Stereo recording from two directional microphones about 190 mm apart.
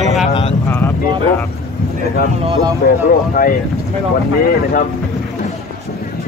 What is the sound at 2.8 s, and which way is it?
Speech, 50° left (ahead or behind).